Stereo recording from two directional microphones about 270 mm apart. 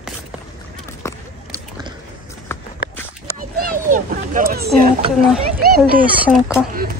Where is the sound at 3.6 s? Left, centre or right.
Right.